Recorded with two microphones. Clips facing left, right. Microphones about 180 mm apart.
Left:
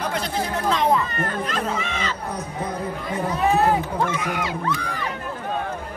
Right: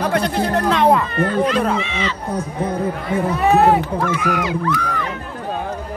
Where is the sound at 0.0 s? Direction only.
60° right (ahead or behind).